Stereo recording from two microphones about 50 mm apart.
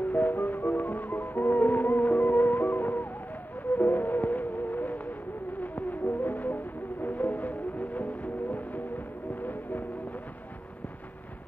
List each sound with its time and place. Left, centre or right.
0.1 s music: left